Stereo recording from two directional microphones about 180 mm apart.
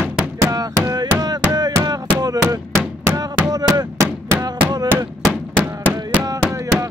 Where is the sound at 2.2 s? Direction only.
20° right (ahead or behind).